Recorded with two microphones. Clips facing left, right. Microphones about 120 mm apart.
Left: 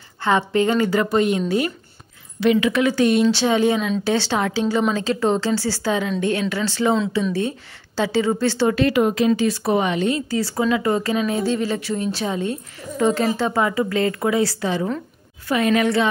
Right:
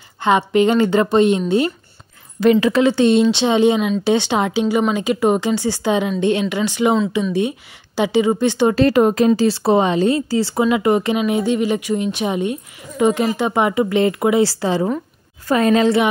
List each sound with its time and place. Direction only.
0.2 s speech: 20° right (ahead or behind)
2.4 s speech: 40° right (ahead or behind); by 8.7 s 20° right (ahead or behind)
8.7 s a woman's voice: 40° right (ahead or behind)
9.4 s a woman's voice: 30° right (ahead or behind)